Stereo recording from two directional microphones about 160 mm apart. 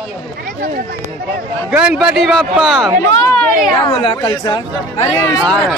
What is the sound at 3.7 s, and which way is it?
Speech, 30° left (ahead or behind).